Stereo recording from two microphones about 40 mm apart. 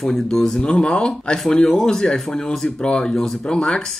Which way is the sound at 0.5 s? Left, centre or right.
Left.